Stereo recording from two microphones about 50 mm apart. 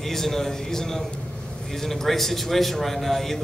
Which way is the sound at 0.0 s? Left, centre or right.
Centre.